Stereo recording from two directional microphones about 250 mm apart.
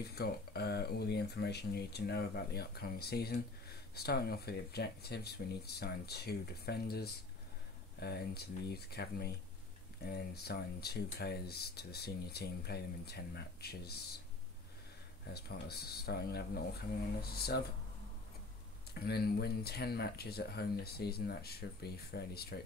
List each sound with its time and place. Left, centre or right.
0.1 s speech: left
15.2 s speech: left
18.9 s speech: left